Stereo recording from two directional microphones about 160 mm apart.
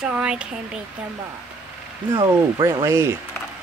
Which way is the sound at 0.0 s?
5° right (ahead or behind).